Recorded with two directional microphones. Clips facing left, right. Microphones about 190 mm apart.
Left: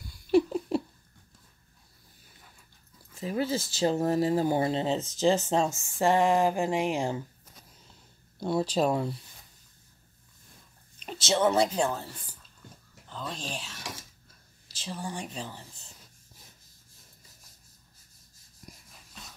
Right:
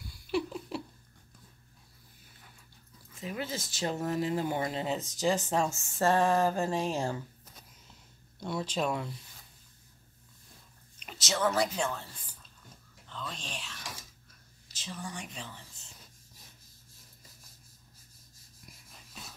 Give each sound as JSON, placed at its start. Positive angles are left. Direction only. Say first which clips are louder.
{"t": 0.3, "sound": "a sound", "louder": "left 9 dB", "side_deg": 40}
{"t": 3.2, "sound": "speech", "louder": "left 7 dB", "side_deg": 35}
{"t": 8.4, "sound": "speech", "louder": "left 6 dB", "side_deg": 35}
{"t": 11.1, "sound": "speech", "louder": "left 5 dB", "side_deg": 30}
{"t": 13.1, "sound": "a woman's voice", "louder": "left 5 dB", "side_deg": 40}
{"t": 18.6, "sound": "rub", "louder": "left 6 dB", "side_deg": 40}